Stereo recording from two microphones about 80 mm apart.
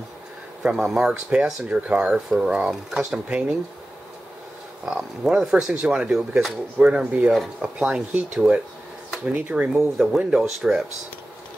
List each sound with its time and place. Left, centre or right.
0.6 s speech: centre
4.9 s speech: centre
9.7 s speech: centre